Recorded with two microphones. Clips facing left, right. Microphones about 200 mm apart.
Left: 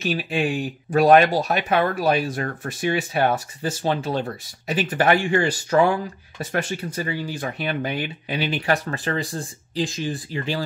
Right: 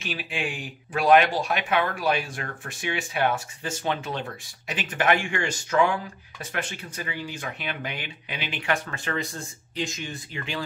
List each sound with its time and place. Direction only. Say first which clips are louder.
0.0 s speech: left 8 dB; 40° left (ahead or behind)